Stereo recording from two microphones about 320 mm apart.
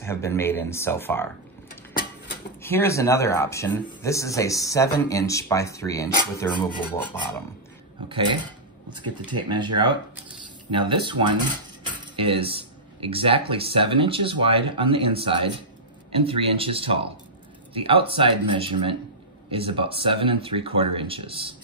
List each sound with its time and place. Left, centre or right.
0.0 s speech: centre
2.6 s speech: centre
8.1 s speech: centre